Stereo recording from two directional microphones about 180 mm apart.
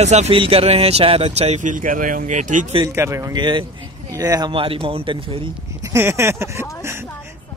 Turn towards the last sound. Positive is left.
turn(degrees=-15)  # may be behind; listen again after turning